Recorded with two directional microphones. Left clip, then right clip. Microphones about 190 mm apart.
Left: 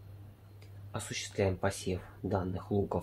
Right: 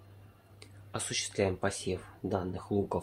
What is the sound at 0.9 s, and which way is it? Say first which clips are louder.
Speech: right 4 dB; 35° right (ahead or behind).